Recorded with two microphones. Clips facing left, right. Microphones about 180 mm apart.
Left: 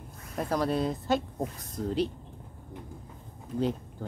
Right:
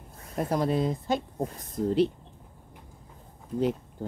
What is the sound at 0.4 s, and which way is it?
Speech, 25° right (ahead or behind).